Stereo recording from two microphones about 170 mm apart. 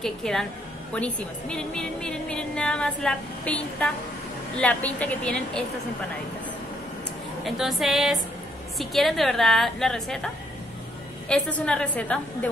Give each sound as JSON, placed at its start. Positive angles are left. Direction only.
{"t": 0.0, "sound": "a woman's voice", "side_deg": 5}
{"t": 7.4, "sound": "a woman's voice", "side_deg": 0}